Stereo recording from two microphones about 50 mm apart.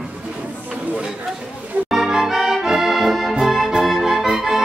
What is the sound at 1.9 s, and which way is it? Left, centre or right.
Music, centre.